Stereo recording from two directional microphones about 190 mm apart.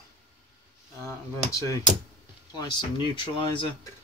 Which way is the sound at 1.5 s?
15° left (ahead or behind).